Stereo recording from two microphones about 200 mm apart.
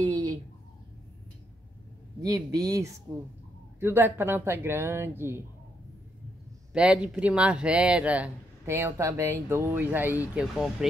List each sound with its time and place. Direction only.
0.0 s a sound: 20° right (ahead or behind)
2.2 s speech: 15° right (ahead or behind)
6.7 s speech: 5° right (ahead or behind)